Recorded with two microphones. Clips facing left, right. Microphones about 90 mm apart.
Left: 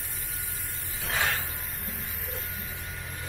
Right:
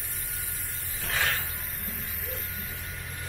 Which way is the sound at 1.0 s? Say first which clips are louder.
Left 1 dB; centre (ahead or behind).